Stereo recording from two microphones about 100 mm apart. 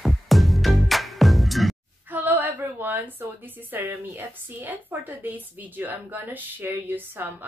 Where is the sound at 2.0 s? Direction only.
15° right (ahead or behind).